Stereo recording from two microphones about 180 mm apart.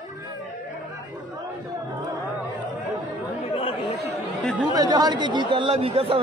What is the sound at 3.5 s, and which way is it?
Chatter, 30° left (ahead or behind).